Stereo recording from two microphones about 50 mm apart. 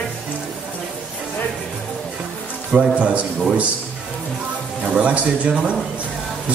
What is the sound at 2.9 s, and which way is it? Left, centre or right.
Speech, right.